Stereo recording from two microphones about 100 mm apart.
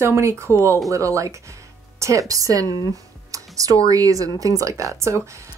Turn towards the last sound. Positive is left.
turn(degrees=-30)  # may be behind; listen again after turning